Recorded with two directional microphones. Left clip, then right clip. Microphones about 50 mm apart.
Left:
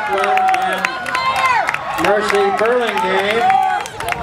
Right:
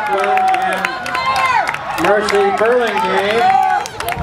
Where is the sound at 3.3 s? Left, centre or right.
Centre.